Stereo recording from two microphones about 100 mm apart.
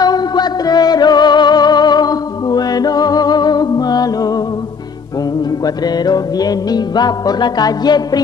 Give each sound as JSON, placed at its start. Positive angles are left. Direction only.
{"t": 0.0, "sound": "music", "side_deg": 40}
{"t": 6.0, "sound": "music", "side_deg": 40}